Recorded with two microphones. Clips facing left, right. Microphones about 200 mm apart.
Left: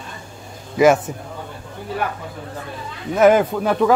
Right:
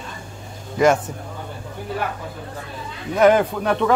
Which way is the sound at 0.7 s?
5° left (ahead or behind).